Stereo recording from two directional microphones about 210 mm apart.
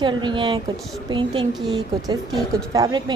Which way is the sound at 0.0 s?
20° right (ahead or behind).